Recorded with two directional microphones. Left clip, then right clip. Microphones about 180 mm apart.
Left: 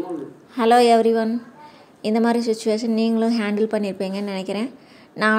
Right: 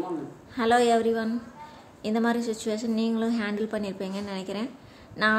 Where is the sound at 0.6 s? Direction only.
30° left (ahead or behind).